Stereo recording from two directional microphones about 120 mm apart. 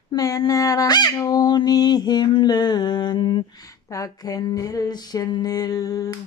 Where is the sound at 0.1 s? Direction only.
30° left (ahead or behind).